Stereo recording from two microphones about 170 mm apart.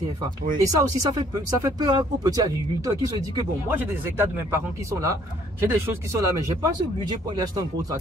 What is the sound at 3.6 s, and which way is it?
Speech, 10° right (ahead or behind).